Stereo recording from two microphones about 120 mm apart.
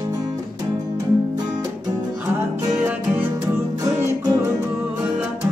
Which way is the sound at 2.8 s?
10° right (ahead or behind).